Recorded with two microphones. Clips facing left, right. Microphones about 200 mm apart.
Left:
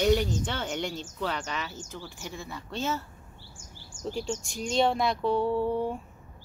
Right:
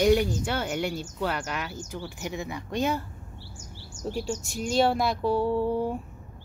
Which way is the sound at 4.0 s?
5° right (ahead or behind).